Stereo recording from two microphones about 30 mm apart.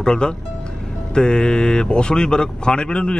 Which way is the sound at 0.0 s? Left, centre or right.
Left.